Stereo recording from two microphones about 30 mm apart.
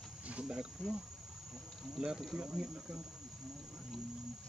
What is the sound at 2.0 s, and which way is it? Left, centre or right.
Speech, right.